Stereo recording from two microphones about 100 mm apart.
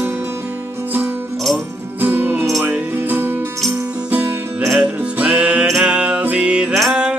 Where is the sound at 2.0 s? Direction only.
20° right (ahead or behind).